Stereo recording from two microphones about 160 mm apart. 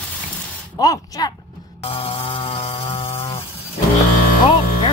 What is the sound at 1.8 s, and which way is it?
Music, 40° left (ahead or behind).